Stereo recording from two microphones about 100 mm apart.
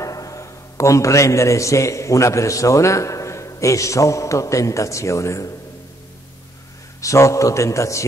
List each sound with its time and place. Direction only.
0.0 s a man's voice: 35° left (ahead or behind)
7.0 s a man's voice: 30° left (ahead or behind)